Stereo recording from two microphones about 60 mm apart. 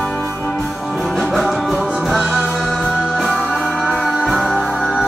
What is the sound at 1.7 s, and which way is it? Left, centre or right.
Music, centre.